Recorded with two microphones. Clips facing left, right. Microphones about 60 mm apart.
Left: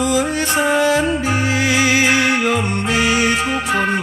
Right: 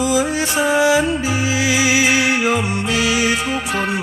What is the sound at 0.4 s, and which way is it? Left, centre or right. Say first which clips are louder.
Music: even; left.